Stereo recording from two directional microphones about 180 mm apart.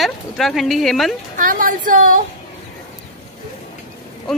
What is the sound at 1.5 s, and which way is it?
Speech, 50° right (ahead or behind).